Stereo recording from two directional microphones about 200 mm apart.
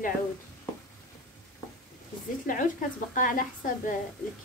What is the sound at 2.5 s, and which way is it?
A woman's voice, 40° left (ahead or behind).